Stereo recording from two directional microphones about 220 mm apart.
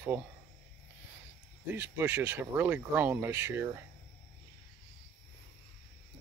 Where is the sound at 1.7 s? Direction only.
10° right (ahead or behind).